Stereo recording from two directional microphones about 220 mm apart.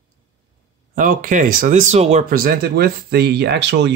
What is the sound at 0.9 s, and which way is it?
Speech, 40° right (ahead or behind).